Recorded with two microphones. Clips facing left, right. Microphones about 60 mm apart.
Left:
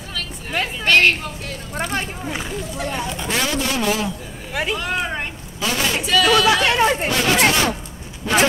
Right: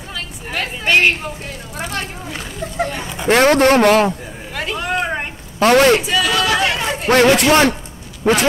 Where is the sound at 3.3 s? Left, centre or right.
Right.